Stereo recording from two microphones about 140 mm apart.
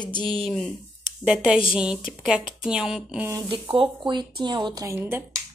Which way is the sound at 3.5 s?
40° right (ahead or behind).